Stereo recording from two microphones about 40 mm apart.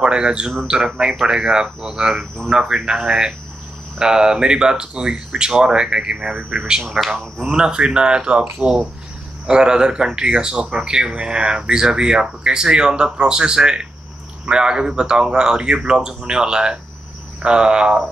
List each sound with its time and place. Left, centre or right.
0.0 s speech: right
6.3 s a man's voice: right
7.0 s speech: centre